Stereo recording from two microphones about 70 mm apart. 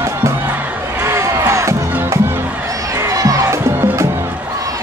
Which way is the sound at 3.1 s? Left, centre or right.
Right.